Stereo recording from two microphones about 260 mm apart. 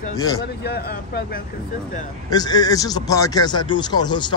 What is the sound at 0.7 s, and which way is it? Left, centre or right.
Speech, left.